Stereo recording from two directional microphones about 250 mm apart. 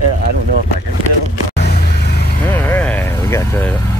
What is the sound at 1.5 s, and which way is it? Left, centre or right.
Vehicle, left.